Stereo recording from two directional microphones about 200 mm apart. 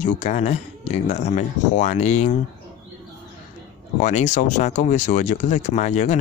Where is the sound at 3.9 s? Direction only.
35° left (ahead or behind).